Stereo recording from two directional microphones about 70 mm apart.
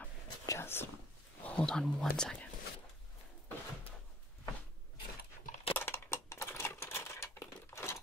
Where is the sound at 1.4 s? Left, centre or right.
Centre.